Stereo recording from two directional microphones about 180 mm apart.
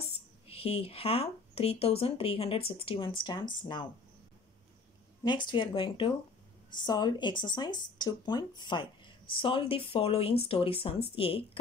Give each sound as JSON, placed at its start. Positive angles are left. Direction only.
{"t": 0.5, "sound": "speech", "side_deg": 35}
{"t": 5.2, "sound": "speech", "side_deg": 25}